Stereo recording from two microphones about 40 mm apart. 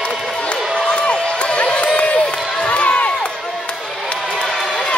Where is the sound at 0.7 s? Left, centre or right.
Left.